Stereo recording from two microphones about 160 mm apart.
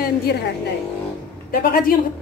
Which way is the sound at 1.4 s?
65° left (ahead or behind).